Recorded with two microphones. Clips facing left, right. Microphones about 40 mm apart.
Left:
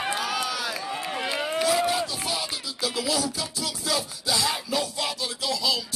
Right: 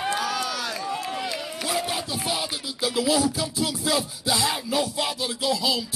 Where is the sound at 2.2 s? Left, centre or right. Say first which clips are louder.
Right 2 dB; centre.